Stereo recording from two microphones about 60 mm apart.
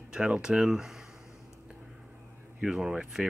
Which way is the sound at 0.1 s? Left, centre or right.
Centre.